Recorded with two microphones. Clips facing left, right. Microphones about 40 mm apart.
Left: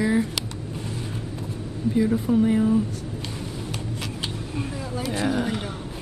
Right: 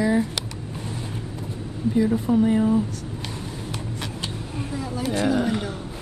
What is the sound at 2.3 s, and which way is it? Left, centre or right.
Speech, centre.